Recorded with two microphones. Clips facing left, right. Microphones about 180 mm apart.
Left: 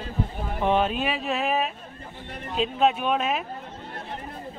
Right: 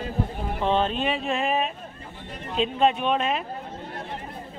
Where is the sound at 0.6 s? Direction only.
10° left (ahead or behind).